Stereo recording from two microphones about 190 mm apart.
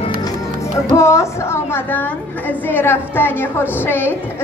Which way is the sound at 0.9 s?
15° left (ahead or behind).